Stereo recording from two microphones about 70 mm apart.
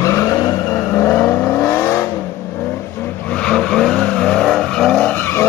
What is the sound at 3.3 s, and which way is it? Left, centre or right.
Vehicle, centre.